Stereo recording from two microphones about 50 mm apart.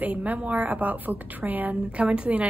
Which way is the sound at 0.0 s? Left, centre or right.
Right.